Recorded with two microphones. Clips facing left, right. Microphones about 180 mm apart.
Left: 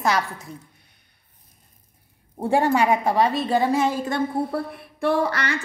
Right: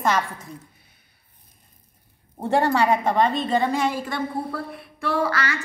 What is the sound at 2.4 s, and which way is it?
A woman's voice, 10° left (ahead or behind).